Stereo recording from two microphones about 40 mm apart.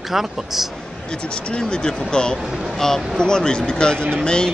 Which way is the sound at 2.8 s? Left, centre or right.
Centre.